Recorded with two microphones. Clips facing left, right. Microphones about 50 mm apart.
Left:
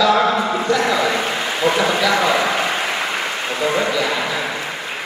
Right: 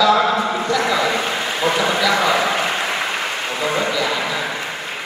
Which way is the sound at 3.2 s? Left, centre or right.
Left.